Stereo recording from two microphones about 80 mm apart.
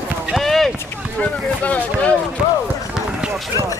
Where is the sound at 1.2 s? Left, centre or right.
Centre.